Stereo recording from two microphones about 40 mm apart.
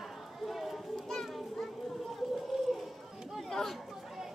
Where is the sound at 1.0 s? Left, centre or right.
Centre.